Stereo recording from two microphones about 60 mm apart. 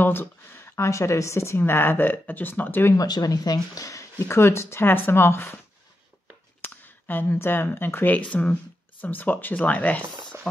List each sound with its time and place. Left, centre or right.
0.0 s a woman's voice: left
1.6 s speech: left
3.0 s speech: left
4.2 s speech: left
6.6 s speech: left
10.4 s speech: centre